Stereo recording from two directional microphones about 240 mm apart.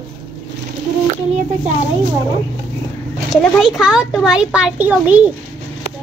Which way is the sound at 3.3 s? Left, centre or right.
Centre.